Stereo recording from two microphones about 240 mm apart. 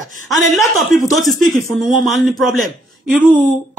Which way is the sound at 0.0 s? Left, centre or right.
Right.